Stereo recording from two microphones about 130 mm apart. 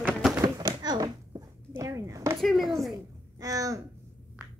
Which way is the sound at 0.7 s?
30° right (ahead or behind).